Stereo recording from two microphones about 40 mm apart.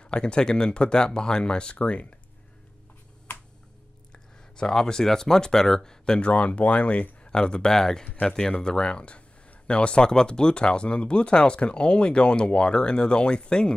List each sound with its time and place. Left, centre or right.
0.0 s speech: left
4.1 s speech: centre
6.2 s speech: left
7.2 s speech: left